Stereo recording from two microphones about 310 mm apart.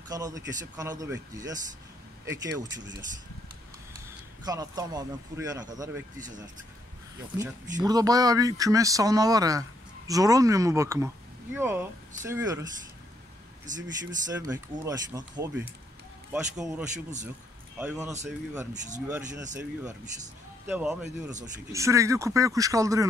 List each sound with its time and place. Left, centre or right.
0.1 s speech: centre
4.5 s speech: centre
6.1 s speech: right
7.3 s speech: centre
13.7 s speech: right
14.2 s speech: centre
18.7 s speech: right
19.0 s speech: centre